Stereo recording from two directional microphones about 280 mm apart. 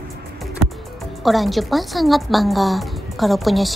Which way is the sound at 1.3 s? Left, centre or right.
Centre.